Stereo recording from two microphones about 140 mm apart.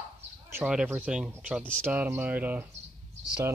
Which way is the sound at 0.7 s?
10° right (ahead or behind).